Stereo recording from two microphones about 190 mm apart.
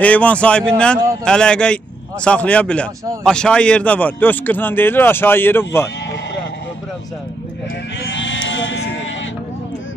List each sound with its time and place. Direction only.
0.0 s speech: 5° left (ahead or behind)
8.1 s sheep: 75° left (ahead or behind)